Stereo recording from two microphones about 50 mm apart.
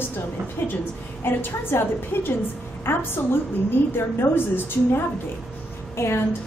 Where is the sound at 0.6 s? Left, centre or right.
Left.